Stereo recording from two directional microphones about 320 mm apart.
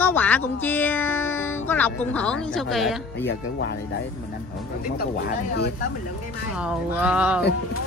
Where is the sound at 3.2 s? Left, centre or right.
Left.